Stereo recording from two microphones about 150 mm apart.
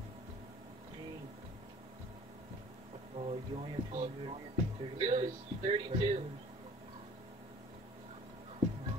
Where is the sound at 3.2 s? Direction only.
50° right (ahead or behind).